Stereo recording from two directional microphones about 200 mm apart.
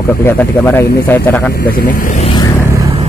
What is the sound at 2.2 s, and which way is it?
Vehicle, 20° left (ahead or behind).